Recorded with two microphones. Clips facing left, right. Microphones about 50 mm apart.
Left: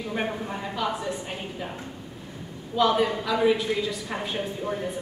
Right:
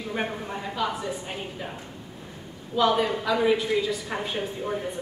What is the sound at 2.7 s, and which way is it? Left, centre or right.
A woman's voice, centre.